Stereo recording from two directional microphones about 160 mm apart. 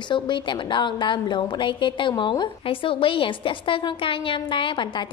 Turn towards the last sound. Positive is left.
turn(degrees=30)  # may be behind; listen again after turning